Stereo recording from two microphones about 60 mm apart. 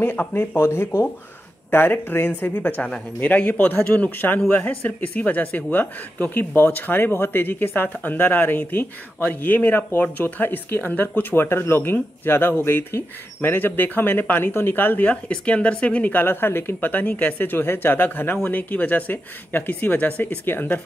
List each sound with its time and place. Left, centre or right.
0.0 s a man's voice: left
15.0 s speech: left